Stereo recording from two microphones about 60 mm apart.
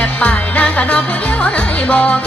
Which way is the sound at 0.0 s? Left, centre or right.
Left.